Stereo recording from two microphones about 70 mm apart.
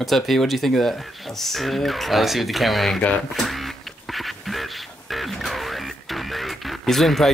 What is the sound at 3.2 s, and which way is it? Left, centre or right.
Music, centre.